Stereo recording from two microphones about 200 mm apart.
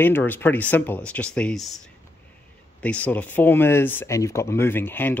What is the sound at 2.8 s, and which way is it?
A man's voice, 5° left (ahead or behind).